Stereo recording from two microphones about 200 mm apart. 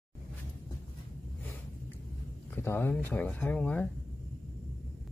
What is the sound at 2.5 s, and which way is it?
Speech, 10° left (ahead or behind).